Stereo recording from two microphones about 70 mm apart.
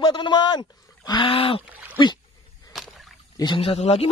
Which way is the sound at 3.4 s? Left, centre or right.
Left.